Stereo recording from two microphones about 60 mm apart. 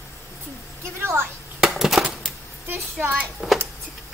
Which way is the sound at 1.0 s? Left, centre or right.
Right.